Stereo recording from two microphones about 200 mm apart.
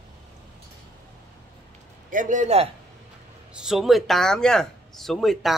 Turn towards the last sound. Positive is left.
turn(degrees=0)  # may be behind; listen again after turning